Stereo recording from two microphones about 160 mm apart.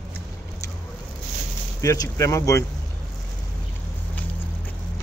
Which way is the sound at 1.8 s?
20° left (ahead or behind).